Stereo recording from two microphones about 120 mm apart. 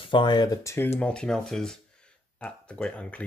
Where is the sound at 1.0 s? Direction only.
10° left (ahead or behind).